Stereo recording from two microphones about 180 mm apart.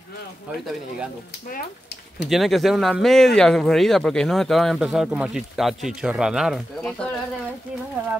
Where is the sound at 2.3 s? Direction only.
Centre (ahead or behind).